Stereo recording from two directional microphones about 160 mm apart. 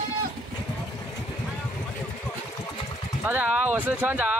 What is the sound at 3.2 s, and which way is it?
Speech, 10° right (ahead or behind).